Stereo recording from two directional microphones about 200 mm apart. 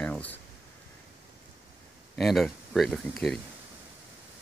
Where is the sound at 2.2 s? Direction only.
Centre (ahead or behind).